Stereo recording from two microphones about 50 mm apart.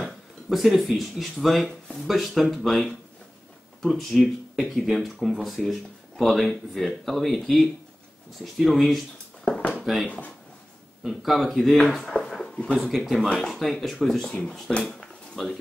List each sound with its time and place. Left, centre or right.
0.5 s speech: centre
9.6 s a sound: left
10.0 s speech: left
11.1 s speech: centre
13.3 s speech: centre